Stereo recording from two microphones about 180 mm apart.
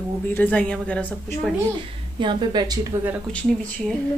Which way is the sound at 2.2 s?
25° right (ahead or behind).